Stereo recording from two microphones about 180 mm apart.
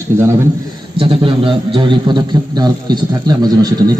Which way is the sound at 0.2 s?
15° right (ahead or behind).